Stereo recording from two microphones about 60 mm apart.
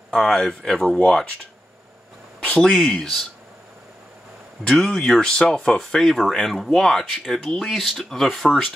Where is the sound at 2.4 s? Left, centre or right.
Centre.